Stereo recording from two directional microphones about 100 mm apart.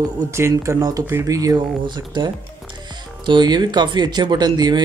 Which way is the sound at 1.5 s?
50° right (ahead or behind).